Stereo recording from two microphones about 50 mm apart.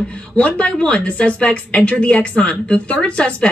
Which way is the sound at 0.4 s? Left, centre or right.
Left.